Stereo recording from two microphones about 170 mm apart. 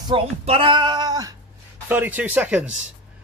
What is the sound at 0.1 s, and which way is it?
Speech, 30° right (ahead or behind).